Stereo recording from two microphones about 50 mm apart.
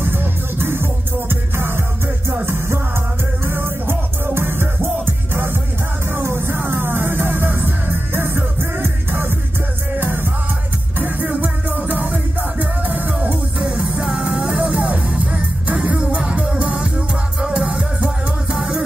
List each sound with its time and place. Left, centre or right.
0.0 s music: right
3.4 s music: right
13.2 s music: centre